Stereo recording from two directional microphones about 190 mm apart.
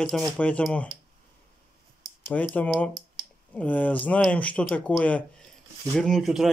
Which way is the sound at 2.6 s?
5° left (ahead or behind).